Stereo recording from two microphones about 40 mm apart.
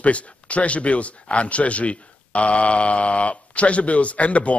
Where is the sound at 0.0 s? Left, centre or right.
Left.